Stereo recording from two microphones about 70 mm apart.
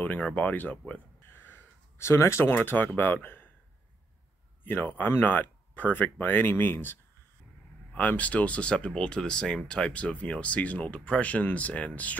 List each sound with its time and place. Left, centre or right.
0.0 s speech: left
1.4 s wheeze: left
2.0 s speech: left
4.6 s speech: left
7.9 s speech: left